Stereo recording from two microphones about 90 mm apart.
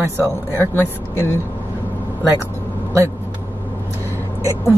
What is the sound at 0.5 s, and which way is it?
Speech, 25° left (ahead or behind).